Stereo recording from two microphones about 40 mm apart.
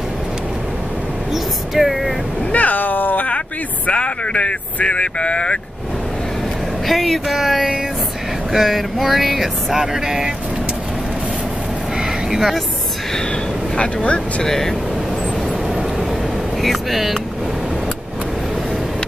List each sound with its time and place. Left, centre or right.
1.3 s speech: centre
2.5 s speech: left
3.3 s speech: left
6.9 s speech: centre
12.3 s speech: centre
13.7 s speech: left
14.4 s speech: centre
16.6 s speech: centre